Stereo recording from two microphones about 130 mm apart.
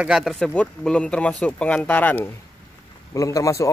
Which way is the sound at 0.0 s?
5° right (ahead or behind).